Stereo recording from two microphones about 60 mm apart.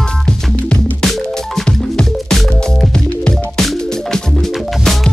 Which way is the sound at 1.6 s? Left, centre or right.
Centre.